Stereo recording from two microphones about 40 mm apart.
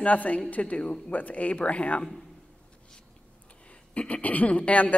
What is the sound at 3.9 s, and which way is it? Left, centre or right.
A woman's voice, left.